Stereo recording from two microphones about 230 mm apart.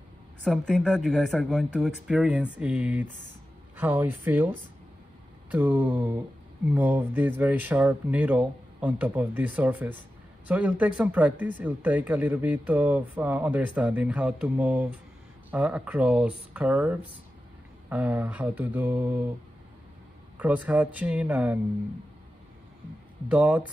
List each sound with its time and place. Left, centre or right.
0.4 s speech: centre
20.3 s speech: centre
23.3 s speech: centre